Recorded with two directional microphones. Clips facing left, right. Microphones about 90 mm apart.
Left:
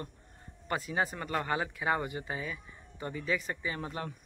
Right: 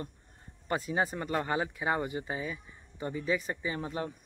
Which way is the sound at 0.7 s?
25° right (ahead or behind).